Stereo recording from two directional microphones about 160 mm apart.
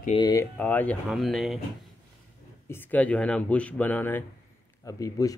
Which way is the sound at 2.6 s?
10° left (ahead or behind).